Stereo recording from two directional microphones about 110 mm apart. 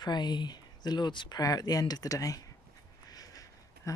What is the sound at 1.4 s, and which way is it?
Speech, 35° left (ahead or behind).